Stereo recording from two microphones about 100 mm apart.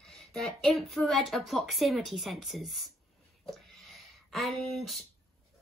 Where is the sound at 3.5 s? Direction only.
Centre (ahead or behind).